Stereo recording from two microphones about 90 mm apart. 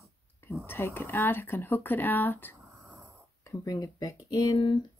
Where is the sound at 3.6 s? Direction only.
40° left (ahead or behind).